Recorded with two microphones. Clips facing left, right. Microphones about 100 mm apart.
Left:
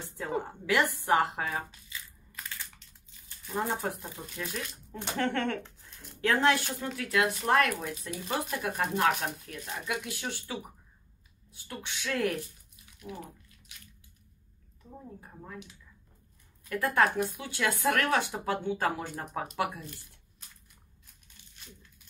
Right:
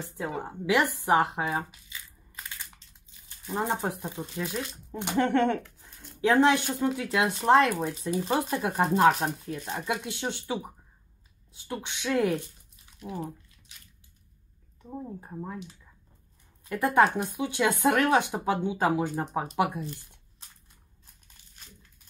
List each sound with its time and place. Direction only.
0.2 s a woman's voice: 15° right (ahead or behind)
0.9 s crushing: 20° right (ahead or behind)
3.4 s speech: 20° right (ahead or behind)
15.1 s speech: 30° right (ahead or behind)